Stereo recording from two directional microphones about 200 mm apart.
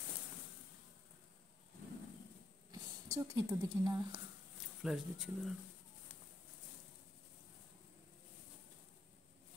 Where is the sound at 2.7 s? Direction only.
15° right (ahead or behind).